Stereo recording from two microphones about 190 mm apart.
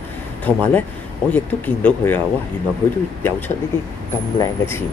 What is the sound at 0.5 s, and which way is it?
Speech, 10° left (ahead or behind).